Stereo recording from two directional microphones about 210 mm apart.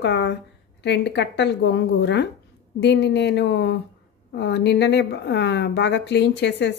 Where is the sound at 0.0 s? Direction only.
55° left (ahead or behind).